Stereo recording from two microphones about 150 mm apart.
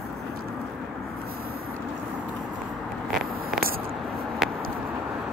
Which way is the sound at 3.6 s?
80° right.